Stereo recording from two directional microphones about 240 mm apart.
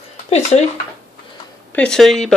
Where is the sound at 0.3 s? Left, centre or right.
Left.